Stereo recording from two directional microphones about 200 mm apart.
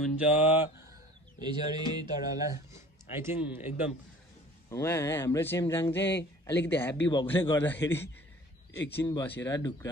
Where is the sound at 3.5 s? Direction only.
10° right (ahead or behind).